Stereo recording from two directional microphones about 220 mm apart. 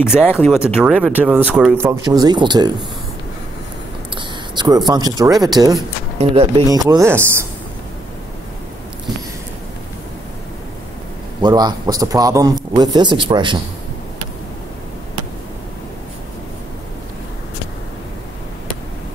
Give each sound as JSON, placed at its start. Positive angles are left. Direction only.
{"t": 0.2, "sound": "speech", "side_deg": 5}
{"t": 4.2, "sound": "a man's voice", "side_deg": -20}
{"t": 11.4, "sound": "a man's voice", "side_deg": -20}